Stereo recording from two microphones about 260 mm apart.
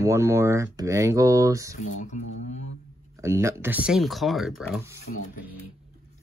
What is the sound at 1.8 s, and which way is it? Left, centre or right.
Speech, left.